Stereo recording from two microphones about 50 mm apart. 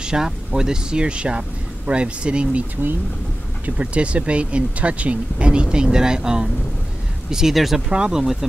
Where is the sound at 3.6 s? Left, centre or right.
Right; by 7.8 s centre.